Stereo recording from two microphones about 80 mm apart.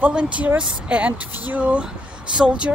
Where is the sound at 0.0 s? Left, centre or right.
Centre.